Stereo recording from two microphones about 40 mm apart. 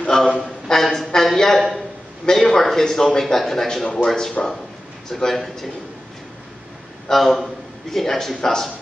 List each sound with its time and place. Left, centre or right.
0.1 s a man's voice: centre
7.1 s a man's voice: centre